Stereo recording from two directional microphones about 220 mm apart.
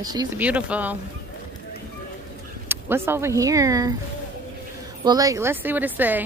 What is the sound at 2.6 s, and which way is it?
Speech, 10° right (ahead or behind).